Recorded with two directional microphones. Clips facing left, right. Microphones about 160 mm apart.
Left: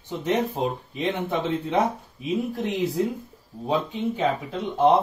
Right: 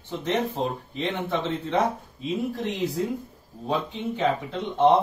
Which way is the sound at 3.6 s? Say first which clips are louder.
Left 3 dB; 10° left (ahead or behind).